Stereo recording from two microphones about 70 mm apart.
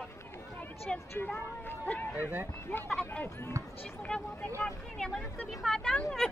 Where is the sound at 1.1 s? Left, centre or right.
Left.